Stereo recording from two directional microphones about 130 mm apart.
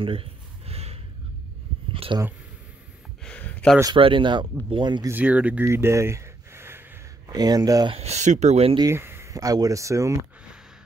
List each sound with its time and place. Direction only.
0.0 s a sound: 45° right (ahead or behind)
2.1 s speech: 35° right (ahead or behind)
3.3 s a sound: 10° left (ahead or behind)
3.9 s speech: 40° right (ahead or behind)
5.0 s speech: 10° right (ahead or behind)
5.7 s a sound: 20° right (ahead or behind)
7.2 s speech: 30° right (ahead or behind)
7.9 s speech: 55° right (ahead or behind)
8.9 s speech: 20° right (ahead or behind)